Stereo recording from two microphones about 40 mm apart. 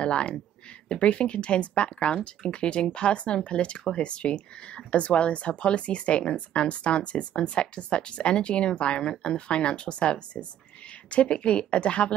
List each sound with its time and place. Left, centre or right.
0.0 s speech: left